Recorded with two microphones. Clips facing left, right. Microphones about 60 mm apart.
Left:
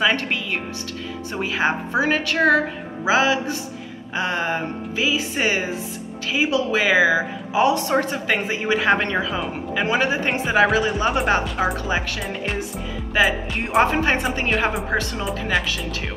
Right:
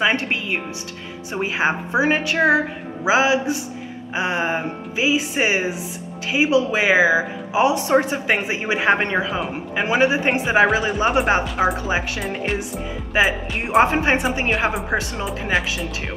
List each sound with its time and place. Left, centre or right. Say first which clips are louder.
0.0 s a woman's voice: right 1 dB; right
11.4 s speech: right 3 dB; centre
11.9 s speech: right 1 dB; centre
13.6 s speech: right 3 dB; centre
13.8 s a woman's voice: right 1 dB; right